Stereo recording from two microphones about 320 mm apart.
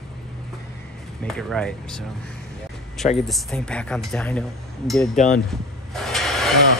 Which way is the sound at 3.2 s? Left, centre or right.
Centre.